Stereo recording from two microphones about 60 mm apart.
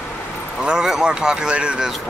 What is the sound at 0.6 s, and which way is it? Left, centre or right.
Speech, centre.